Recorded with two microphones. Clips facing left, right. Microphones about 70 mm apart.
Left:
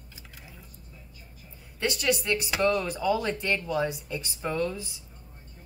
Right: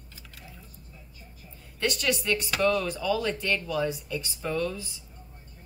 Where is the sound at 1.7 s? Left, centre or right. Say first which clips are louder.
Left 1 dB; centre.